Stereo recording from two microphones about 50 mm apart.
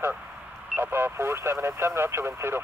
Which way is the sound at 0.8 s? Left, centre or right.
Right.